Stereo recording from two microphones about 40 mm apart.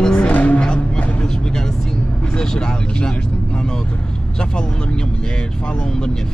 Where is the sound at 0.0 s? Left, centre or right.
Centre.